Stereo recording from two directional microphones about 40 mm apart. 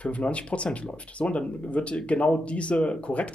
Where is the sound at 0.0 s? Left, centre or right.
Left.